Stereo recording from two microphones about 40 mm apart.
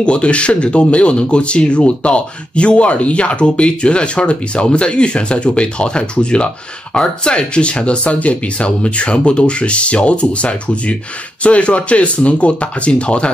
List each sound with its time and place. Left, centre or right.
0.0 s speech: left